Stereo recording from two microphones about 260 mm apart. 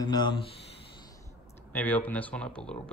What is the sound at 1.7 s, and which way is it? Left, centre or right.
Speech, centre.